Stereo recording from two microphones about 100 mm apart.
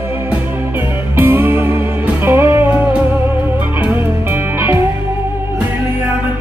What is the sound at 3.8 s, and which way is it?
Music, 20° right (ahead or behind).